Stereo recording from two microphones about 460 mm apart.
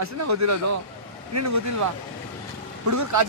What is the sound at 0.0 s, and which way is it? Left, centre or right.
Speech, right.